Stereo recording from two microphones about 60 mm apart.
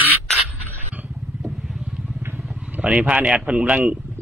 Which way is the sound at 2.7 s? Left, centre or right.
Right.